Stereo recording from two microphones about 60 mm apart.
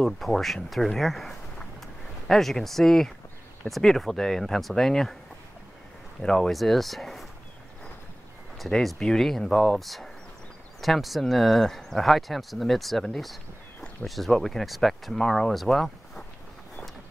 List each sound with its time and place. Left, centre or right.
0.0 s speech: centre
6.2 s speech: centre
8.5 s speech: centre